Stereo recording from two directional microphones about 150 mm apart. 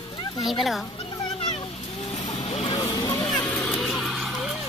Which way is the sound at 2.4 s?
35° left (ahead or behind).